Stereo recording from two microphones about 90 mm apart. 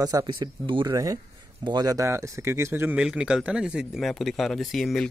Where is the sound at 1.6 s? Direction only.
55° right (ahead or behind).